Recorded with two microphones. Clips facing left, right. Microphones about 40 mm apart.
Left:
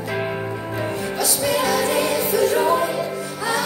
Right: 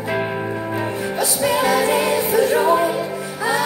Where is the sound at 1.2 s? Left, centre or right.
Centre.